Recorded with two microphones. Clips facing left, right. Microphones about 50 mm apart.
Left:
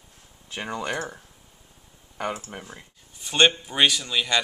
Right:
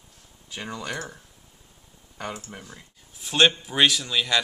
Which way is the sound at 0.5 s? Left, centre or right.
Left.